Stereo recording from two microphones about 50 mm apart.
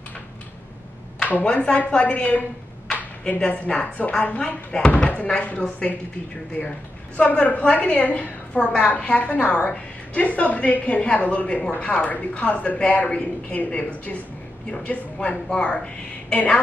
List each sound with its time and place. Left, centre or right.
1.2 s a woman's voice: left
7.2 s a woman's voice: left